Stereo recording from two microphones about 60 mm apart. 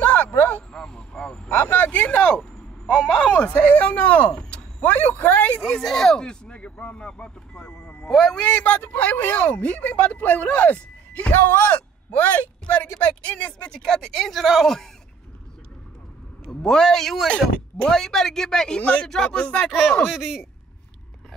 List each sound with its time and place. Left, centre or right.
0.0 s a sound: left
0.7 s vehicle: centre
2.9 s a sound: centre
3.3 s speech: left
5.6 s speech: centre
8.4 s speech: centre
16.4 s speech: centre
17.3 s speech: centre
18.8 s speech: left
20.1 s speech: centre